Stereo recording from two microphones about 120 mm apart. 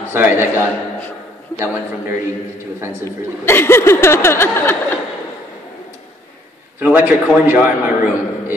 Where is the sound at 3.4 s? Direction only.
20° left (ahead or behind).